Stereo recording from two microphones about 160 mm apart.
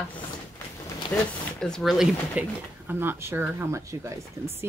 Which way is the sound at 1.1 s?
5° left (ahead or behind).